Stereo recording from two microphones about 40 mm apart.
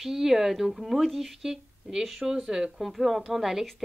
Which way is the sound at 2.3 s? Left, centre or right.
Centre.